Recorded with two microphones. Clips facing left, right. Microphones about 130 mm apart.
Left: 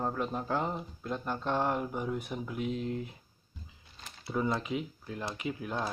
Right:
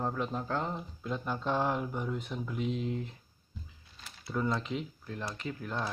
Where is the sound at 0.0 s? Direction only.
5° left (ahead or behind).